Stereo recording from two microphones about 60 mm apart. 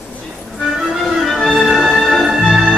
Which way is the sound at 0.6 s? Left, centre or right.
Centre.